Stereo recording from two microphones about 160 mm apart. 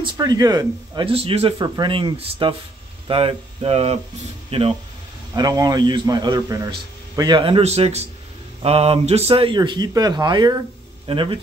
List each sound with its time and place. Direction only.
0.0 s a man's voice: 25° right (ahead or behind)
5.3 s a man's voice: 25° right (ahead or behind)